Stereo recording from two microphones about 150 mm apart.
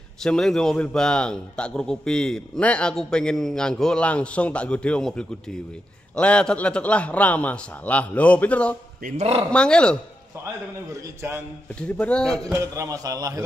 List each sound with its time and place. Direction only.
0.2 s a man's voice: 5° left (ahead or behind)
9.0 s a man's voice: 70° right (ahead or behind)
9.5 s a man's voice: 5° left (ahead or behind)
10.9 s a man's voice: 20° right (ahead or behind)
12.0 s a man's voice: 5° left (ahead or behind)
12.4 s a man's voice: 20° right (ahead or behind)